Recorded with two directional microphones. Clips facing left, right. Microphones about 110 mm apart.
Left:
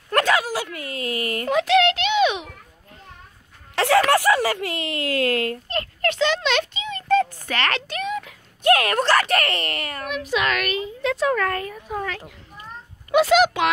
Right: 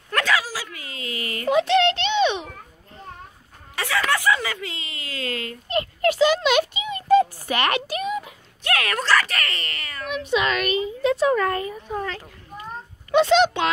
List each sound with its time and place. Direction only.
0.1 s dog: 45° left (ahead or behind)
1.5 s a sound: centre (ahead or behind)
3.7 s speech: 60° left (ahead or behind)
5.7 s a sound: 10° right (ahead or behind)
8.6 s speech: 40° left (ahead or behind)
10.0 s a woman's voice: centre (ahead or behind)